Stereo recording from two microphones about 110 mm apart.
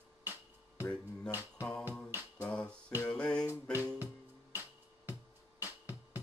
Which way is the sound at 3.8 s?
15° right (ahead or behind).